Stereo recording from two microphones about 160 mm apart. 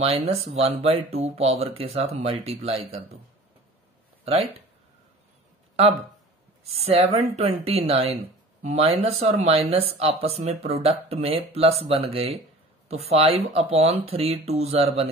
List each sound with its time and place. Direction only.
0.0 s speech: 40° right (ahead or behind)
4.2 s speech: 40° right (ahead or behind)
6.7 s speech: 40° right (ahead or behind)